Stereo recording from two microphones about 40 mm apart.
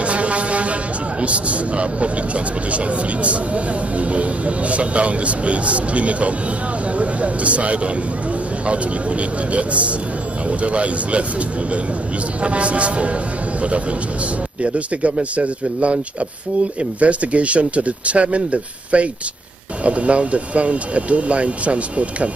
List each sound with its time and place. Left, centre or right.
0.0 s vehicle: right
1.2 s speech: right
12.4 s speech: right
14.6 s speech: right
17.0 s speech: right